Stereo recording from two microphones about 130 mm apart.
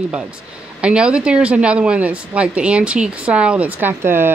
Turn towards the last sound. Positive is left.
turn(degrees=-15)  # may be behind; listen again after turning